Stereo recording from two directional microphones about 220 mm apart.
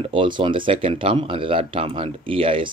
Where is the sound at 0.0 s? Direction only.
20° right (ahead or behind).